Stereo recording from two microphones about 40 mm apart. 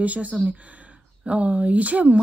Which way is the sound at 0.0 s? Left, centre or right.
Right.